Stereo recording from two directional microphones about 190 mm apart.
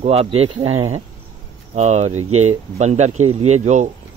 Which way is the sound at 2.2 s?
90° right.